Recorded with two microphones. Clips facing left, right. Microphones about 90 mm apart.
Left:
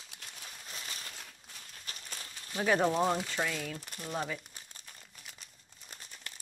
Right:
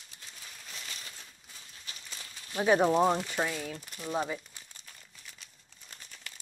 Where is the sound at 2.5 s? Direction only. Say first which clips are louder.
Right 4 dB; 15° right (ahead or behind).